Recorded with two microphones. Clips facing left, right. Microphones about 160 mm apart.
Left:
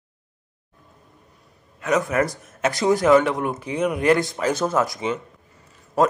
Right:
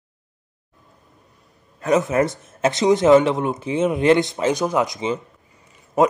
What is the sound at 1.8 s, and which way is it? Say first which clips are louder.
Speech: right 3 dB; 25° right (ahead or behind).